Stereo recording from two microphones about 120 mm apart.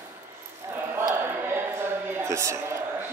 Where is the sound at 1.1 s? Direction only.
20° right (ahead or behind).